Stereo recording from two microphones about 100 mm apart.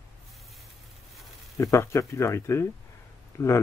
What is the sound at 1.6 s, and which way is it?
A man's voice, 30° left (ahead or behind).